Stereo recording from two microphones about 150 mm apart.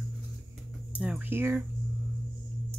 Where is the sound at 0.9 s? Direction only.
10° right (ahead or behind).